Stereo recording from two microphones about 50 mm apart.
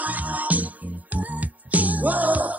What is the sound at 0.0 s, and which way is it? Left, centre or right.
Music, right.